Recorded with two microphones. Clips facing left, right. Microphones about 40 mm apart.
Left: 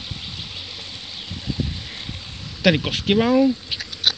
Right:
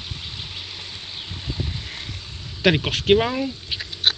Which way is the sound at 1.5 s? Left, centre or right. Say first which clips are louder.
Left 5 dB; centre.